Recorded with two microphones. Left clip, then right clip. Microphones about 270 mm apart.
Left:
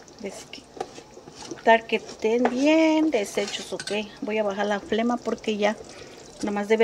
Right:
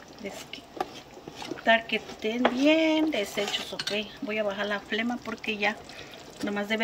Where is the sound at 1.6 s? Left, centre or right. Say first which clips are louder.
Left 4 dB; centre.